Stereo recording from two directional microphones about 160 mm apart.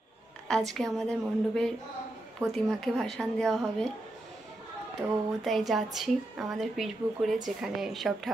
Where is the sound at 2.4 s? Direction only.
Centre (ahead or behind).